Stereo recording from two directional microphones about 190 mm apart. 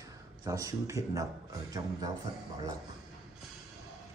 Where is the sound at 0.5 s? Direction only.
15° right (ahead or behind).